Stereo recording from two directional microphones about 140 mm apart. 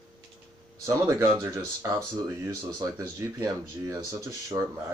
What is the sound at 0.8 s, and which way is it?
Speech, 20° right (ahead or behind).